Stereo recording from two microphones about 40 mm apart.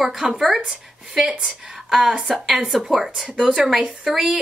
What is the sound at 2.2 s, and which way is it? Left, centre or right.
Speech, centre.